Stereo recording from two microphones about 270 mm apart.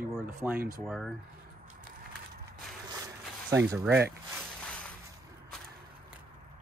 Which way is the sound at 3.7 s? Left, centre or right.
Centre.